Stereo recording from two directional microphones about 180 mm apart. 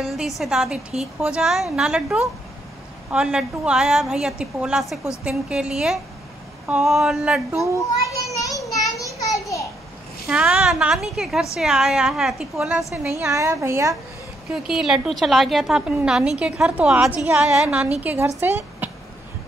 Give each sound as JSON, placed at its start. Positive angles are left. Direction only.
{"t": 0.0, "sound": "a woman's voice", "side_deg": 0}
{"t": 8.6, "sound": "a sound", "side_deg": 20}
{"t": 10.2, "sound": "a woman's voice", "side_deg": -5}
{"t": 13.2, "sound": "a child's voice", "side_deg": -15}
{"t": 14.5, "sound": "a woman's voice", "side_deg": 0}